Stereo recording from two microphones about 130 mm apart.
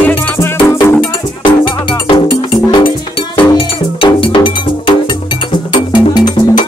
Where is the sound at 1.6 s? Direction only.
40° left (ahead or behind).